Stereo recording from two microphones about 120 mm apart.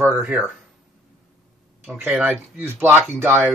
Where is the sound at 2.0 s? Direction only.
10° right (ahead or behind).